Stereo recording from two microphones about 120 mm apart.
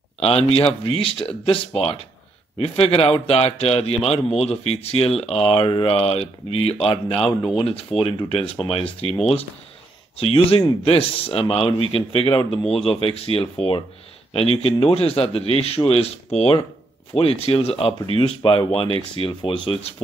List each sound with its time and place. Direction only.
0.2 s speech: 55° left (ahead or behind)
10.1 s speech: 55° left (ahead or behind)